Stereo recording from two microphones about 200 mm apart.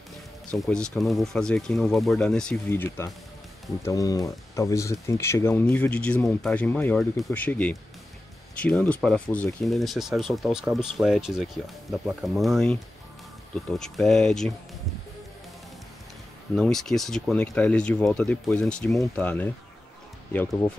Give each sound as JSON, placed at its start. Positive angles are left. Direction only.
{"t": 0.5, "sound": "speech", "side_deg": 5}
{"t": 16.5, "sound": "speech", "side_deg": 0}